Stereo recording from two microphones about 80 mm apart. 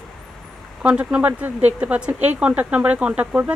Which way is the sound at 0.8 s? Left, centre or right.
Centre.